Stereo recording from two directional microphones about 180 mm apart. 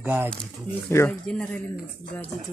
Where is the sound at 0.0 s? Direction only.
10° right (ahead or behind).